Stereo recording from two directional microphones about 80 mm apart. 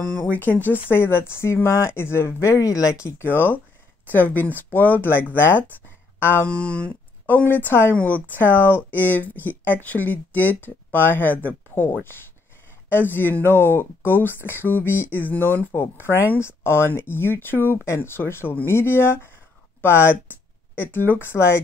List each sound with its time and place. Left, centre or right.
0.0 s speech: centre
0.3 s speech: left
6.4 s speech: centre; by 21.5 s left